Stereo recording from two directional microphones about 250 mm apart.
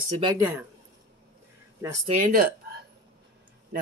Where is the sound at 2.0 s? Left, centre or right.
Right.